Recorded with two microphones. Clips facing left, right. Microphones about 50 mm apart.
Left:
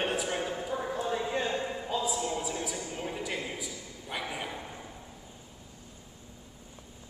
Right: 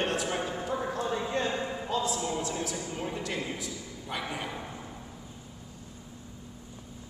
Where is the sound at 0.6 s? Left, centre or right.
Centre.